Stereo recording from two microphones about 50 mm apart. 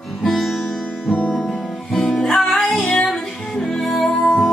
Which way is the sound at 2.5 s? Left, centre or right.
Left.